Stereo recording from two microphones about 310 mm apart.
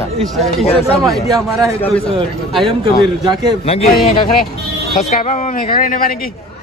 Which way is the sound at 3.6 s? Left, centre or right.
Centre.